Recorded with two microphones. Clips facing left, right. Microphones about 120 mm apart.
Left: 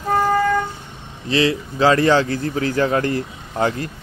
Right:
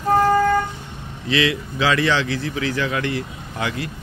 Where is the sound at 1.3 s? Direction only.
35° left (ahead or behind).